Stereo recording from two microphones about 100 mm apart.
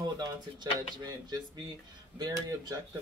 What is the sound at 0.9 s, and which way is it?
Speech, 45° right (ahead or behind).